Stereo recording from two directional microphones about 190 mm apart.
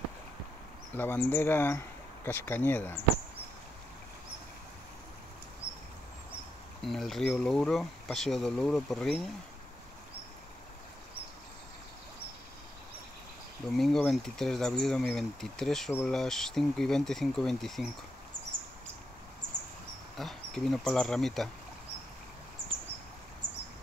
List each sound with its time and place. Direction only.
0.9 s speech: 10° left (ahead or behind)
6.8 s speech: centre (ahead or behind)
13.7 s speech: centre (ahead or behind)
20.2 s speech: centre (ahead or behind)
23.4 s a sound: 45° right (ahead or behind)